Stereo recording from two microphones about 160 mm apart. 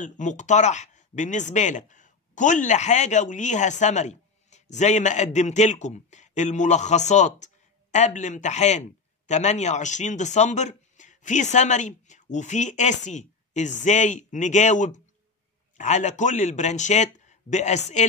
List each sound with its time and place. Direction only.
0.0 s speech: 50° left (ahead or behind)